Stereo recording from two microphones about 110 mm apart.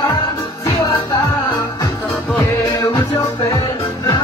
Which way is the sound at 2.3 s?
35° left (ahead or behind).